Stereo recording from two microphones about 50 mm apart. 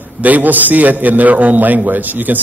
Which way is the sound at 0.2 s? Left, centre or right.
Right.